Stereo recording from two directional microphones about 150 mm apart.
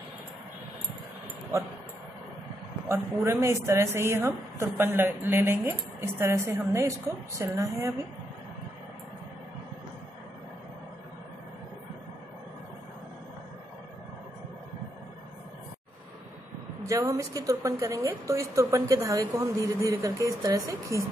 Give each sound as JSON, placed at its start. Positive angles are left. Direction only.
{"t": 2.9, "sound": "a woman's voice", "side_deg": -15}
{"t": 16.8, "sound": "a woman's voice", "side_deg": -20}